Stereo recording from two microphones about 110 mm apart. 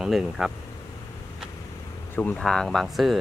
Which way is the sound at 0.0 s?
5° right (ahead or behind).